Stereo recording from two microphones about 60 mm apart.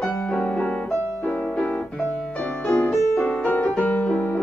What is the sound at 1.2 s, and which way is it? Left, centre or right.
Piano, left.